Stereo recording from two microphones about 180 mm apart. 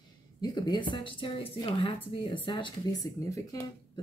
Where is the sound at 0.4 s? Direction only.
25° left (ahead or behind).